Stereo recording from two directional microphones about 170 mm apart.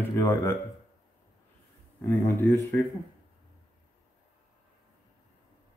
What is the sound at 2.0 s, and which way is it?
Speech, 10° left (ahead or behind).